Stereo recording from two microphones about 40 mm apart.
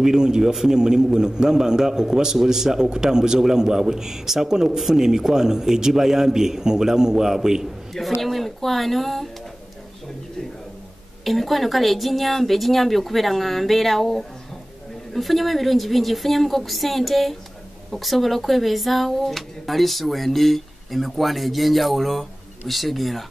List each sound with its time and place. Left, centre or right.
0.0 s a man's voice: centre
7.9 s speech: centre
11.2 s speech: centre